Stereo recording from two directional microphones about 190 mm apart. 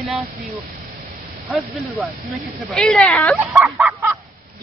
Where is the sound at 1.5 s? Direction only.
5° right (ahead or behind).